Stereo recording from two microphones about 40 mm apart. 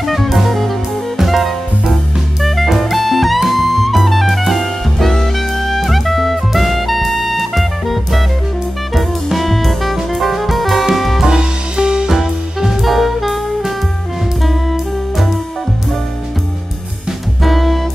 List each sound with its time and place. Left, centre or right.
0.0 s music: centre
2.4 s jazz: centre
5.1 s music: centre
11.2 s music: centre
12.1 s music: centre
17.4 s music: centre